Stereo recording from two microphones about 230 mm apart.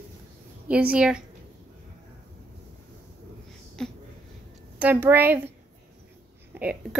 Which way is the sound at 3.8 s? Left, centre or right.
Centre.